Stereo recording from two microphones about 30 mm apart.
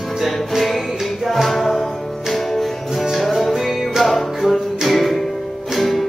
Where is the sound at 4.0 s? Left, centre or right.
Centre.